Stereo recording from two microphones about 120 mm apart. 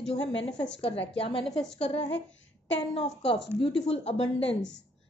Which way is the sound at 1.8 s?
60° left (ahead or behind).